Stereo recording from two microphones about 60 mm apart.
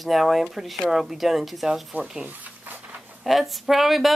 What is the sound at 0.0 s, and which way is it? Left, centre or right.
Speech, centre.